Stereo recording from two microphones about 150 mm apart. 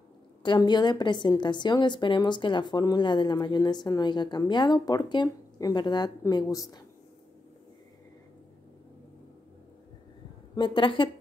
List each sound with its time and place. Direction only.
0.4 s a woman's voice: 30° left (ahead or behind)
10.5 s a woman's voice: 35° left (ahead or behind)